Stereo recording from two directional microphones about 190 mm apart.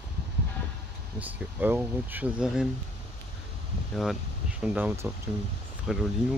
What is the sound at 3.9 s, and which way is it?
Speech, centre (ahead or behind).